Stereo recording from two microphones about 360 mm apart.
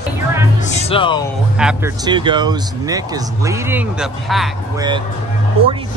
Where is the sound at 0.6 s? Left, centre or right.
Centre.